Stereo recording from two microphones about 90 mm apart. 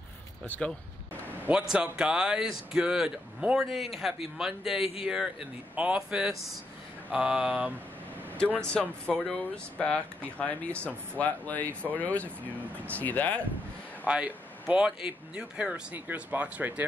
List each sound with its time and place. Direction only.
0.5 s speech: 15° left (ahead or behind)
1.5 s speech: 10° right (ahead or behind)
8.5 s speech: 10° left (ahead or behind)
14.0 s speech: 15° right (ahead or behind)